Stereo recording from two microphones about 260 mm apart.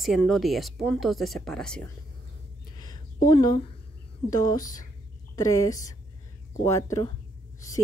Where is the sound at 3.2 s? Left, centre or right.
Centre.